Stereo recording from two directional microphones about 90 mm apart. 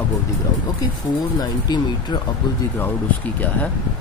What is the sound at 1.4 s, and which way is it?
Speech, 50° left (ahead or behind).